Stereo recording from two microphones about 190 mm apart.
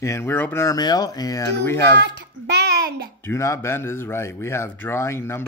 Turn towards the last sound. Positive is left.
turn(degrees=15)  # may be behind; listen again after turning